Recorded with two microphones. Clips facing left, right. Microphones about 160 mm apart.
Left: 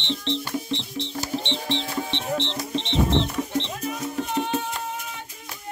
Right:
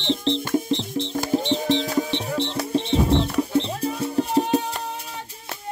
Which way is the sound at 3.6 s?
35° right (ahead or behind).